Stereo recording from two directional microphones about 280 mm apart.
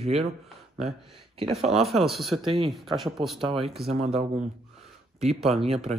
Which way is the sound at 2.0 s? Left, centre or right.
Centre.